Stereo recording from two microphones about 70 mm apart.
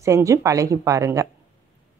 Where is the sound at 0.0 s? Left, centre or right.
Right.